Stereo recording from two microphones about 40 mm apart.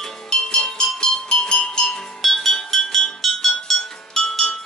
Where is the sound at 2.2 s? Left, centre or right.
Centre.